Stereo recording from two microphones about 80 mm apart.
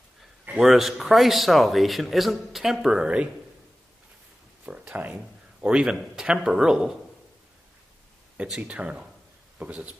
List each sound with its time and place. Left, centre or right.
0.5 s a man's voice: centre
0.7 s speech: centre
4.6 s speech: centre
8.4 s speech: centre